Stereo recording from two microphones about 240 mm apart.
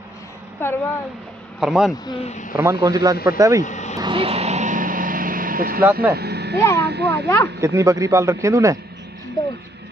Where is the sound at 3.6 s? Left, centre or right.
Left.